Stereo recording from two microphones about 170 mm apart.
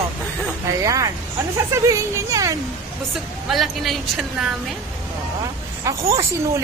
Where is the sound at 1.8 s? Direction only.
20° right (ahead or behind).